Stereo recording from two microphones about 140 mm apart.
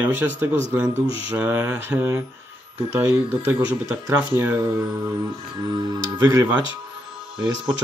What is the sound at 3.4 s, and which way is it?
Speech, 15° right (ahead or behind).